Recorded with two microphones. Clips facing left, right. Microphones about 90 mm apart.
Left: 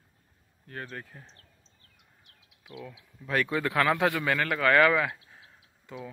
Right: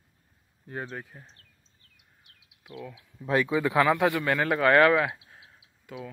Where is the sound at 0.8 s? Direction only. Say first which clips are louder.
Right 2 dB; 5° right (ahead or behind).